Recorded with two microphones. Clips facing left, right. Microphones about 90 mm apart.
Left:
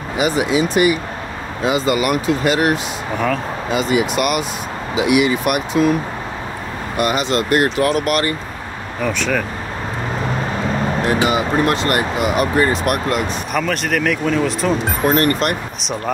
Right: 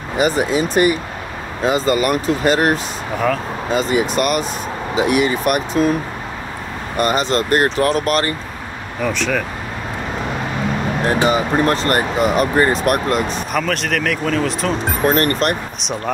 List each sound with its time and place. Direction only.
0.2 s speech: 40° right (ahead or behind)
7.0 s speech: 40° right (ahead or behind)
9.0 s speech: centre (ahead or behind)
11.2 s speech: 35° right (ahead or behind)
13.5 s speech: centre (ahead or behind)
15.0 s speech: 40° right (ahead or behind)